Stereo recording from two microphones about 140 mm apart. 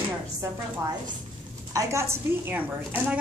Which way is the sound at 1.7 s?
20° right (ahead or behind).